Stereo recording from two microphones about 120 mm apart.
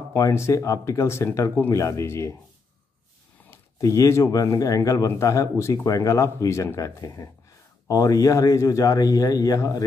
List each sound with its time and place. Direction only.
0.1 s speech: 25° left (ahead or behind)
3.4 s speech: 25° left (ahead or behind)